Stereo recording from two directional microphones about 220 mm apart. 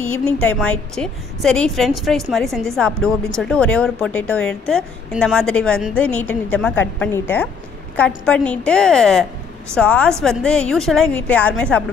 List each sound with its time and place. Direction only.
0.4 s a woman's voice: 5° left (ahead or behind)